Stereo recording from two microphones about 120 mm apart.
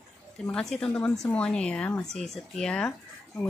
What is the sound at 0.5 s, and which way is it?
A woman's voice, 5° left (ahead or behind).